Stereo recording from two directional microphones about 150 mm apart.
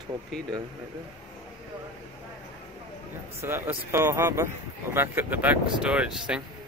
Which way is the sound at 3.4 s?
15° right (ahead or behind).